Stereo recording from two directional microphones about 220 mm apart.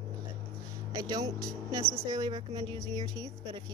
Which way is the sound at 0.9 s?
15° right (ahead or behind).